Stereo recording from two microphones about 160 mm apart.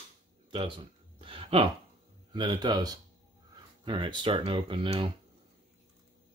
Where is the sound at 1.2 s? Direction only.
35° right (ahead or behind).